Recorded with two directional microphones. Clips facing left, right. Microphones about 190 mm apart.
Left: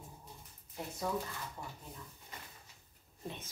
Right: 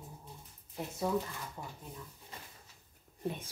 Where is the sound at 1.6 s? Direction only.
15° right (ahead or behind).